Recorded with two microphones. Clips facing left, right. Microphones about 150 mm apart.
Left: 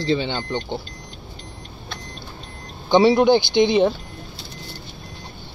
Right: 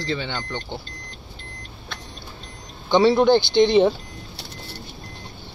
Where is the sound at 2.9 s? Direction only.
10° left (ahead or behind).